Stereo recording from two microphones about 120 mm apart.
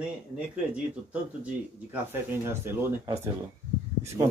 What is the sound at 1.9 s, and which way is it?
Speech, 15° right (ahead or behind).